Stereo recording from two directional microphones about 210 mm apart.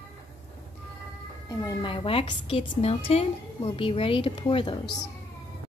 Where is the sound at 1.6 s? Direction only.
25° left (ahead or behind).